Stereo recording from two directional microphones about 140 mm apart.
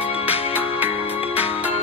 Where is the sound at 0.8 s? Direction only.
45° left (ahead or behind).